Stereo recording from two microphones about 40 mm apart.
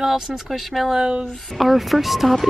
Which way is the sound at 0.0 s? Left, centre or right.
Centre.